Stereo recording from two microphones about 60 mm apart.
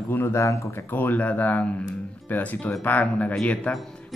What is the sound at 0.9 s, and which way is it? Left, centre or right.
Speech, left.